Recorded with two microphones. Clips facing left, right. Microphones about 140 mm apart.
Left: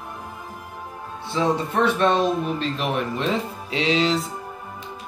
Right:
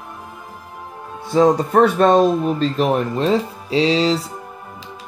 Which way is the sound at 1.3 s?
40° right (ahead or behind).